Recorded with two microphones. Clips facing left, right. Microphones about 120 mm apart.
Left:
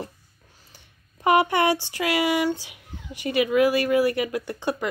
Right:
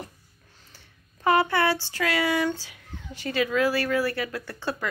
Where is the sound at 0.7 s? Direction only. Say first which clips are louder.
Left 2 dB; 15° left (ahead or behind).